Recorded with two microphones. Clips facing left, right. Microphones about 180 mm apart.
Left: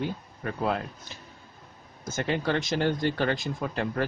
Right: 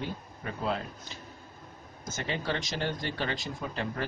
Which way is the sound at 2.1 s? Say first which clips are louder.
Left 6 dB; 55° left (ahead or behind).